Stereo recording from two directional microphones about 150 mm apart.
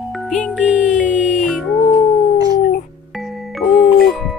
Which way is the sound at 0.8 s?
55° left (ahead or behind).